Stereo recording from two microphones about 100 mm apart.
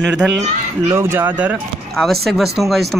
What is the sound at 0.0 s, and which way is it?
Speech, 10° right (ahead or behind).